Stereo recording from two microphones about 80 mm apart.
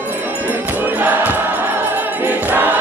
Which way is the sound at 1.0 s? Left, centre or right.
Right.